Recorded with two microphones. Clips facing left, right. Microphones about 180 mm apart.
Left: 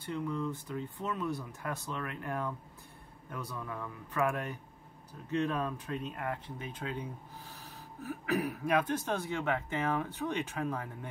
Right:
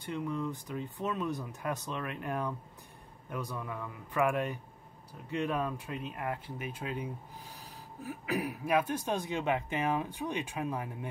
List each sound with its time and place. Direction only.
0.0 s speech: 15° right (ahead or behind)